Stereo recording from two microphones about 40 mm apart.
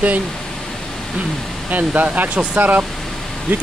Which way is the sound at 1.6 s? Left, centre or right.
Right.